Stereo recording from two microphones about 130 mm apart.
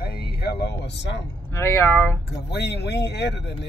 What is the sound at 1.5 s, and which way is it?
Speech, 20° left (ahead or behind).